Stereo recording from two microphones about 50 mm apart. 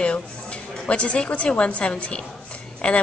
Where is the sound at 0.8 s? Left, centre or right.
Left.